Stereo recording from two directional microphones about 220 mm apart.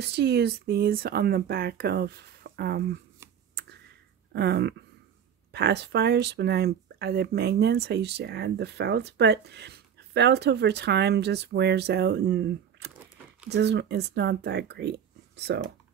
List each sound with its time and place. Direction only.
0.0 s speech: 50° right (ahead or behind)
3.2 s a sound: 10° right (ahead or behind)
4.3 s speech: 50° right (ahead or behind)